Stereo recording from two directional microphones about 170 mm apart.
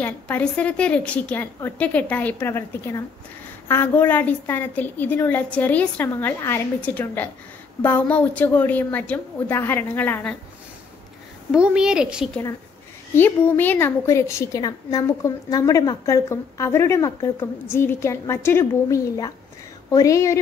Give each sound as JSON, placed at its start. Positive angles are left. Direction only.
{"t": 0.0, "sound": "a woman's voice", "side_deg": 10}
{"t": 11.5, "sound": "a woman's voice", "side_deg": -5}
{"t": 13.1, "sound": "a woman's voice", "side_deg": 10}